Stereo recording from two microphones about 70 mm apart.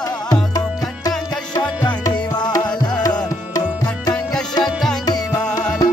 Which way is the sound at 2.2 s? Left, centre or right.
Left.